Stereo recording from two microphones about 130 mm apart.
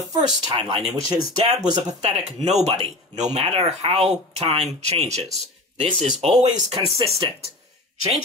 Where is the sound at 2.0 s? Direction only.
55° right (ahead or behind).